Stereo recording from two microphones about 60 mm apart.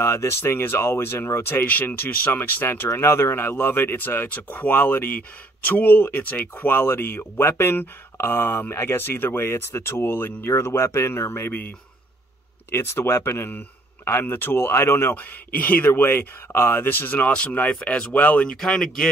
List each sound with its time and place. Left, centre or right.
0.0 s speech: left
2.9 s speech: left
12.7 s speech: left
13.5 s speech: left
15.5 s speech: left
18.6 s speech: centre